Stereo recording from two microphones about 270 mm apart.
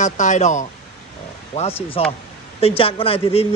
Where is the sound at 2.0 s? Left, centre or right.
Left.